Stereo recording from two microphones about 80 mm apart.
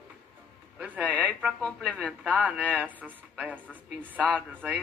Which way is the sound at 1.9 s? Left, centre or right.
Centre.